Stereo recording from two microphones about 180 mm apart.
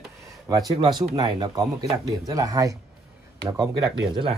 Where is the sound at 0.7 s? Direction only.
25° right (ahead or behind).